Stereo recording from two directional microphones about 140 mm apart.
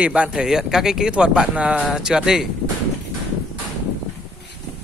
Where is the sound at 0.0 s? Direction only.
10° right (ahead or behind).